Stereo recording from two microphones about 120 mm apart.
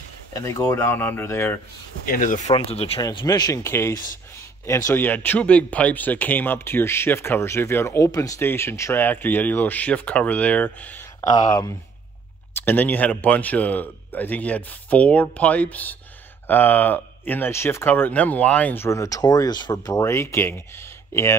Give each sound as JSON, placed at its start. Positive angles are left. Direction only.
{"t": 0.3, "sound": "speech", "side_deg": 25}
{"t": 2.2, "sound": "speech", "side_deg": 90}
{"t": 2.5, "sound": "speech", "side_deg": 55}
{"t": 3.3, "sound": "speech", "side_deg": 30}
{"t": 5.0, "sound": "speech", "side_deg": 15}
{"t": 11.2, "sound": "speech", "side_deg": 35}
{"t": 12.5, "sound": "speech", "side_deg": 15}
{"t": 18.9, "sound": "speech", "side_deg": 30}